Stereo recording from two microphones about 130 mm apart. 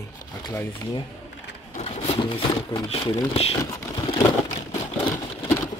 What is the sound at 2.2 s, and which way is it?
Speech, 40° left (ahead or behind).